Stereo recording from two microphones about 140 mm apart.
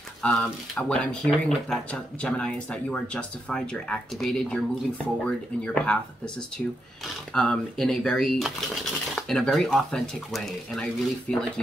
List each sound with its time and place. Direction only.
0.2 s speech: 5° left (ahead or behind)
6.6 s speech: 10° left (ahead or behind)